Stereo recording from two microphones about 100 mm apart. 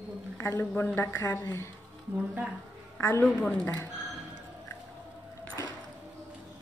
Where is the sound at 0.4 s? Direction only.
25° left (ahead or behind).